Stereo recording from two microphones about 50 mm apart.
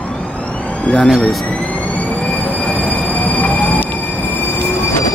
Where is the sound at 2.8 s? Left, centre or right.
Left.